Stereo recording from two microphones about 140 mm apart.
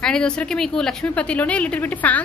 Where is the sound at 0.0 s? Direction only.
5° left (ahead or behind).